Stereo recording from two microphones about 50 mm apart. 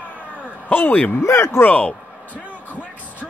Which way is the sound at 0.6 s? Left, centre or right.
Left.